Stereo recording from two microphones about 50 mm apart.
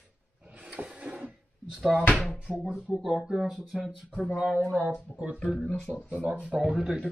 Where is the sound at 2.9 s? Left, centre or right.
Centre.